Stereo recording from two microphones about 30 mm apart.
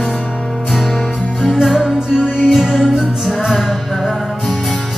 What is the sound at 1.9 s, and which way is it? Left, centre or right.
Music, right.